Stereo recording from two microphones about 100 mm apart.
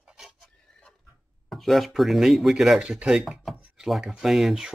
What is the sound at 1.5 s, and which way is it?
Speech, centre (ahead or behind).